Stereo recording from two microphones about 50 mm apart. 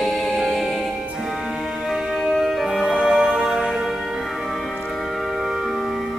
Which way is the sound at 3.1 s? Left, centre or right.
Centre.